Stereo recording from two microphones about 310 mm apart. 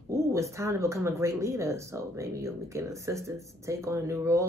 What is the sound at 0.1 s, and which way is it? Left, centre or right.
Speech, centre.